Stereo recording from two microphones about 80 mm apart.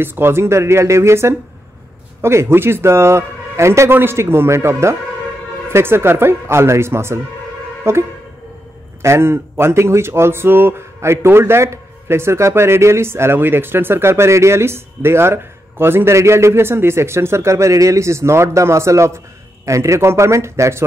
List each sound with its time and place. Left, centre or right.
0.0 s speech: right
9.0 s speech: right